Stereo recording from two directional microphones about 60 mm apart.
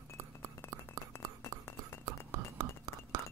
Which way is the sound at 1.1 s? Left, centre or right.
Left.